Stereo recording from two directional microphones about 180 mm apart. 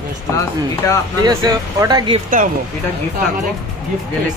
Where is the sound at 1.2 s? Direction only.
20° right (ahead or behind).